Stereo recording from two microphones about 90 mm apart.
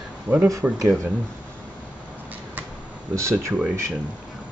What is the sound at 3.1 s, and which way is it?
Speech, 35° right (ahead or behind).